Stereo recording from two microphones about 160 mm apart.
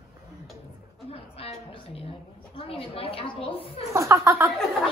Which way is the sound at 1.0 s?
35° left (ahead or behind).